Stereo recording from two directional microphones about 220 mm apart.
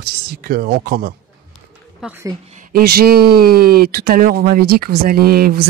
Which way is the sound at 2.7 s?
45° right (ahead or behind).